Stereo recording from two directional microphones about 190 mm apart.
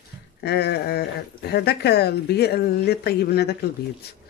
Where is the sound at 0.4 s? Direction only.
60° left (ahead or behind).